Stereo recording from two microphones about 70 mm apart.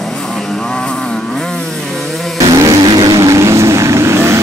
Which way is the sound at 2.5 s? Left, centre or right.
Right.